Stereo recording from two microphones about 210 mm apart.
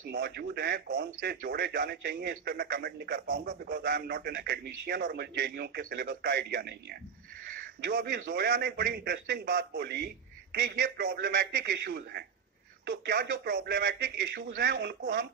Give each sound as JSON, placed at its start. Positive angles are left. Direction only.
{"t": 0.1, "sound": "speech", "side_deg": -50}